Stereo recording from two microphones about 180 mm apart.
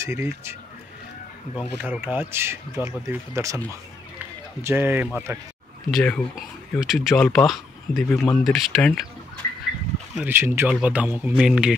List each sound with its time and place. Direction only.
0.0 s speech: 15° right (ahead or behind)
1.8 s speech: 10° right (ahead or behind)
4.6 s speech: 10° right (ahead or behind)
5.9 s speech: 5° left (ahead or behind)
10.1 s speech: 10° right (ahead or behind)